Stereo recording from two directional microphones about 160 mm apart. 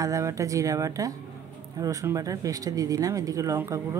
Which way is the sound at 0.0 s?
20° right (ahead or behind).